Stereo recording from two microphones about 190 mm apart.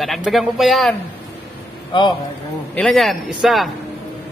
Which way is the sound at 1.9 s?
25° left (ahead or behind).